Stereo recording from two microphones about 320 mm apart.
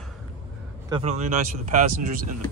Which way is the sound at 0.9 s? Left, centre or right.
Centre.